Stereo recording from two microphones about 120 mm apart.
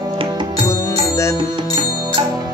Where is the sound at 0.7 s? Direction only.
25° left (ahead or behind).